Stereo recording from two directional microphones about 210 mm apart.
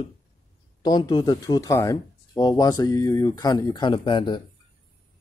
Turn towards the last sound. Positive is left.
turn(degrees=25)  # may be behind; listen again after turning